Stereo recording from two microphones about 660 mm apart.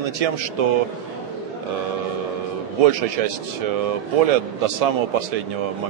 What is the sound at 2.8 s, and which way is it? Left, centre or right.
A man's voice, right.